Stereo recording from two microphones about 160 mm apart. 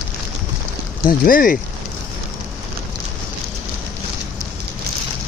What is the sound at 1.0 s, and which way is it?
Speech, 60° left (ahead or behind).